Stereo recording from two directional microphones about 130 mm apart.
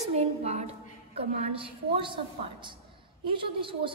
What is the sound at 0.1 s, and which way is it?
A woman's voice, 55° right (ahead or behind).